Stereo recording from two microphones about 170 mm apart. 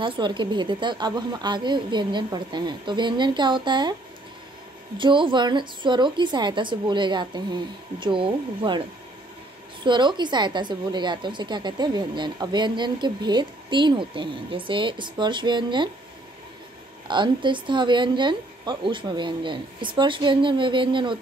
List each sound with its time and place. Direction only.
0.0 s a woman's voice: 30° right (ahead or behind)
4.9 s a woman's voice: 30° right (ahead or behind)
9.8 s a woman's voice: 25° right (ahead or behind)
17.1 s a woman's voice: 30° right (ahead or behind)